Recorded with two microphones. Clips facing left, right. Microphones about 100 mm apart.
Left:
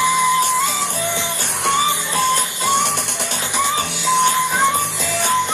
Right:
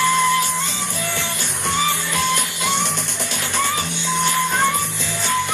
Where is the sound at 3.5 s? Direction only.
15° left (ahead or behind).